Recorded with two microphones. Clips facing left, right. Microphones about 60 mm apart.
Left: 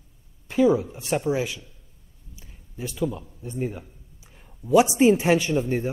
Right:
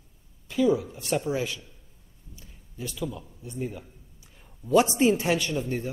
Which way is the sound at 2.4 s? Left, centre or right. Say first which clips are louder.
Left 4 dB; left.